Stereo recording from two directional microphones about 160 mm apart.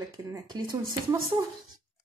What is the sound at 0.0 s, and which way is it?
Speech, 20° right (ahead or behind).